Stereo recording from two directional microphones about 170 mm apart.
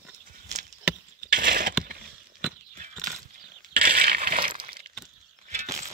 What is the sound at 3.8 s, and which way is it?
Coin, 60° right (ahead or behind).